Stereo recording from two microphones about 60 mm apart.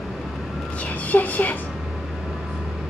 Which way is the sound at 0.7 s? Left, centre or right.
Left.